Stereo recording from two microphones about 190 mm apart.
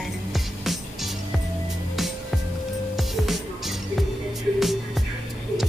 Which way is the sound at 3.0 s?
Centre (ahead or behind).